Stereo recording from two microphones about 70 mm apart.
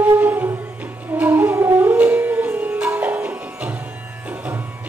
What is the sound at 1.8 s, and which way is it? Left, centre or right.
Music, right.